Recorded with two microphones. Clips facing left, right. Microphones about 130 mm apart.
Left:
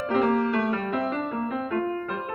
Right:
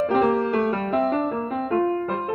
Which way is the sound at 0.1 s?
35° right (ahead or behind).